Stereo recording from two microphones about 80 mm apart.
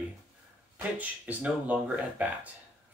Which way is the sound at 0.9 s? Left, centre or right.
Centre.